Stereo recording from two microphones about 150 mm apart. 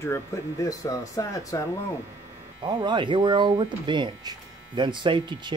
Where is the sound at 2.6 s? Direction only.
30° right (ahead or behind).